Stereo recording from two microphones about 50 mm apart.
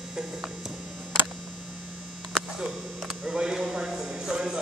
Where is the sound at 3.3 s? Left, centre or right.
Centre.